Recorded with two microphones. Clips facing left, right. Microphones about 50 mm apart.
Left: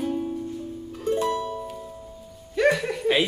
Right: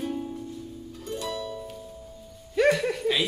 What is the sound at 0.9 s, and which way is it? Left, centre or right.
Music, left.